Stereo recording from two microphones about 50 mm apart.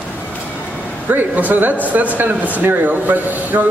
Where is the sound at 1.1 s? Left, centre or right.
Right.